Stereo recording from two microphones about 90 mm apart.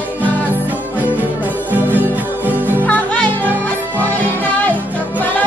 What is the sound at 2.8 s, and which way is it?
Music, 15° left (ahead or behind).